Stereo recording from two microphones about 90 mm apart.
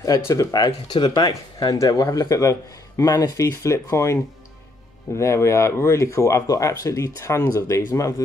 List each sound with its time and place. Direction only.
0.3 s speech: 45° left (ahead or behind)
0.9 s speech: 55° left (ahead or behind)
1.8 s speech: 40° left (ahead or behind)